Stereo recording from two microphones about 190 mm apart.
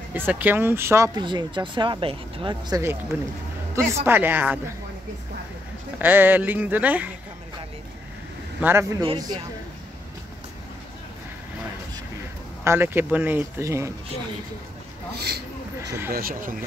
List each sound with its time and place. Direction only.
0.1 s speech: 10° right (ahead or behind); by 2.8 s 25° right (ahead or behind)
3.1 s speech: 10° right (ahead or behind)
5.9 s speech: 10° right (ahead or behind)
8.5 s speech: 10° right (ahead or behind)
9.0 s speech: 20° right (ahead or behind)
12.6 s speech: 10° right (ahead or behind)
15.1 s a sound: 60° right (ahead or behind)
16.1 s speech: 50° right (ahead or behind)